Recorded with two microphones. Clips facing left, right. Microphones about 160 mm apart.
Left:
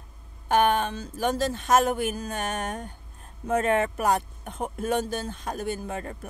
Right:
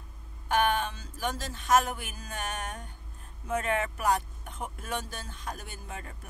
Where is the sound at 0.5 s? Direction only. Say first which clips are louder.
Left 5 dB; 50° left (ahead or behind).